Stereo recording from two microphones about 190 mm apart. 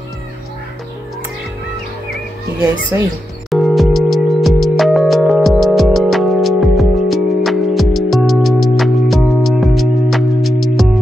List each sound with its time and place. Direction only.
2.9 s speech: 15° right (ahead or behind)
3.4 s music: centre (ahead or behind)